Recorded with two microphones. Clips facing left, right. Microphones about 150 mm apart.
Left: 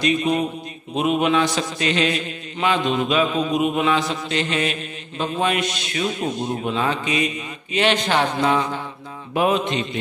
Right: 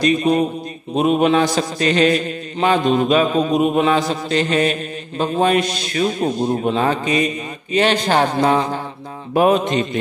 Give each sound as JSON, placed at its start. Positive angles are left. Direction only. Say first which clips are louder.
{"t": 0.0, "sound": "a man's voice", "louder": "right 4 dB", "side_deg": -40}
{"t": 9.3, "sound": "mantra", "louder": "right 5 dB", "side_deg": -45}